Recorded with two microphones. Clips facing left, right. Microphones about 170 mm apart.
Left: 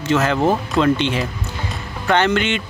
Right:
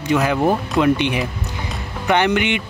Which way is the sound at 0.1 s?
10° right (ahead or behind).